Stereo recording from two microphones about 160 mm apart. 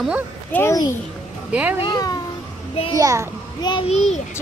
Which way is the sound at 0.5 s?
15° left (ahead or behind).